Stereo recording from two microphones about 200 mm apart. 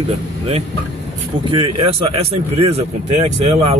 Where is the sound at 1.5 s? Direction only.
25° right (ahead or behind).